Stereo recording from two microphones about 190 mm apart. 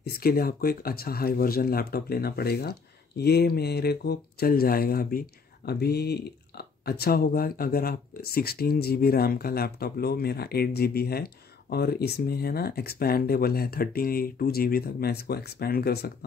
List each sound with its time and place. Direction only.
0.0 s speech: 50° left (ahead or behind)